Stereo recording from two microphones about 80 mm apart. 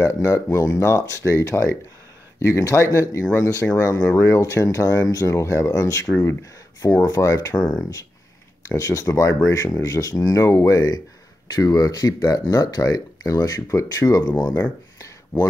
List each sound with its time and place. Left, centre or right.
0.0 s speech: left
7.5 s speech: centre
7.8 s speech: left